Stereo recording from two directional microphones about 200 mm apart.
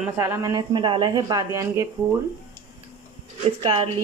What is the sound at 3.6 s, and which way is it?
Speech, 25° right (ahead or behind).